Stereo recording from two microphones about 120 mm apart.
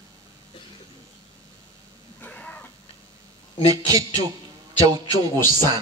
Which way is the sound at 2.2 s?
15° left (ahead or behind).